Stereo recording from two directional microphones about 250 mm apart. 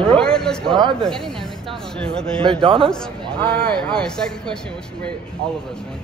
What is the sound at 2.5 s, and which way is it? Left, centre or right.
Speech, right.